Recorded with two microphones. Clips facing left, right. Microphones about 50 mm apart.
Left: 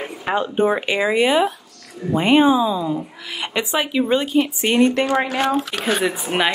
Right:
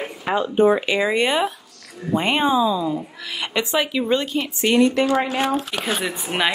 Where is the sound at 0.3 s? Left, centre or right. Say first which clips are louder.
Right 1 dB; left.